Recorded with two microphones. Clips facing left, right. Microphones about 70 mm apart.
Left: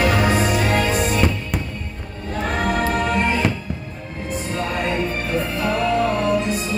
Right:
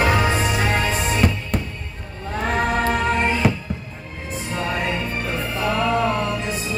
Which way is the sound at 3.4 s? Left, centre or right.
Centre.